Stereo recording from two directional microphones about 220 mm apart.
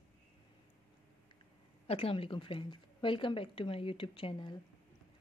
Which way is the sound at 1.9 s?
25° left (ahead or behind).